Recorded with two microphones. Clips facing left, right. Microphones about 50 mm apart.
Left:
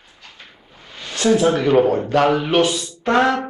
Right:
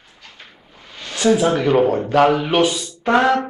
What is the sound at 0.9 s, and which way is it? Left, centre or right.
Speech, centre.